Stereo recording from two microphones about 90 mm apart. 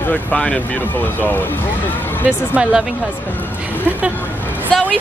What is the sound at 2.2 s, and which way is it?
Speech, 10° right (ahead or behind).